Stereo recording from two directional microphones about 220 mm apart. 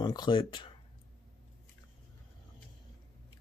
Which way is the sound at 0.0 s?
20° left (ahead or behind).